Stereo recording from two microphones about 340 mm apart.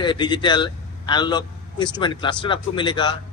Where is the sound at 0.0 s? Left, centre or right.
Centre.